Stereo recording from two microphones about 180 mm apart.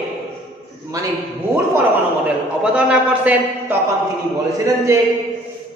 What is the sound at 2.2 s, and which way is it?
A man's voice, 5° right (ahead or behind).